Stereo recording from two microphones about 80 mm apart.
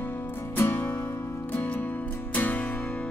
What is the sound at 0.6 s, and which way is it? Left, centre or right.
Music, left.